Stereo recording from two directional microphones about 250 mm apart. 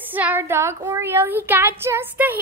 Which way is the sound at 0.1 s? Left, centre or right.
Centre.